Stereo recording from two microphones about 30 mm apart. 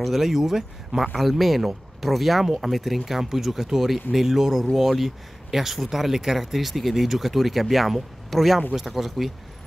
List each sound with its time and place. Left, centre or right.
0.0 s speech: centre
1.6 s a sound: centre
2.0 s speech: centre
2.4 s speech: centre
2.7 s speech: centre